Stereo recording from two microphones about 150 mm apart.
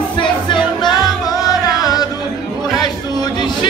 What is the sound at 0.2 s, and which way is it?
Music, 30° left (ahead or behind).